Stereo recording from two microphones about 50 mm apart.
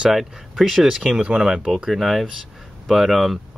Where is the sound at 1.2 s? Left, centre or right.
Centre.